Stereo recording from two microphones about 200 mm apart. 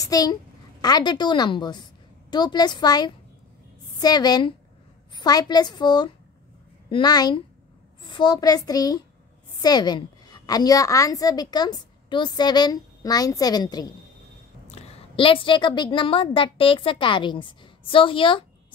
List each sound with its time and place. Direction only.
0.0 s a child's voice: 20° left (ahead or behind)
14.7 s a woman's voice: 30° left (ahead or behind)